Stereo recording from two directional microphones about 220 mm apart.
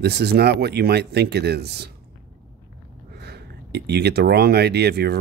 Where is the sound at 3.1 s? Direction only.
50° right (ahead or behind).